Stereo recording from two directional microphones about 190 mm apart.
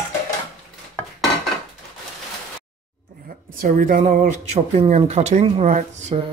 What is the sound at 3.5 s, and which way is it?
Speech, 45° right (ahead or behind).